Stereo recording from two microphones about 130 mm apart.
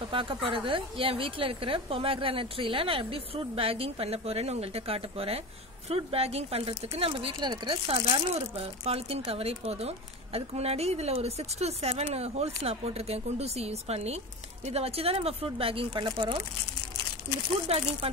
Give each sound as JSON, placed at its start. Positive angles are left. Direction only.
{"t": 0.1, "sound": "speech", "side_deg": -40}
{"t": 15.9, "sound": "speech", "side_deg": -30}
{"t": 18.0, "sound": "speech", "side_deg": -50}